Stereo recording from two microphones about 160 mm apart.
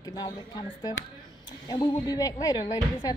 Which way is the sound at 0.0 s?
25° left (ahead or behind).